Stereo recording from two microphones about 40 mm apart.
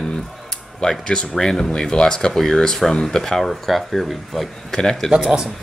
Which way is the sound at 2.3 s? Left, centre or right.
Centre.